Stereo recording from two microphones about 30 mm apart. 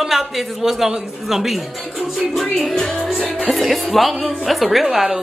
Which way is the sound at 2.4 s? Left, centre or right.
Centre.